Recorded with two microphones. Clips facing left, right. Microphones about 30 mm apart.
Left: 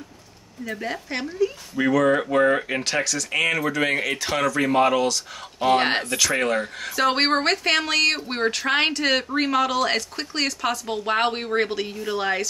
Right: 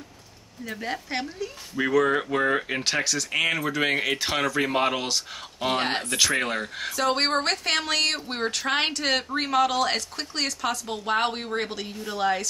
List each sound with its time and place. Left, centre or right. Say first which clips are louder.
0.7 s speech: left 2 dB; centre
2.8 s speech: left 1 dB; centre
5.8 s speech: left 5 dB; centre
6.3 s speech: left 4 dB; centre
7.0 s a woman's voice: left 4 dB; left
7.5 s speech: left 4 dB; centre